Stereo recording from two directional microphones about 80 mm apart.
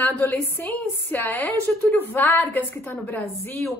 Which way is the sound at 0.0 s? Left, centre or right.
Left.